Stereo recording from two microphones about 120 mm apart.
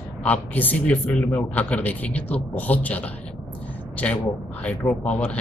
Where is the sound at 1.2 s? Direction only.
25° left (ahead or behind).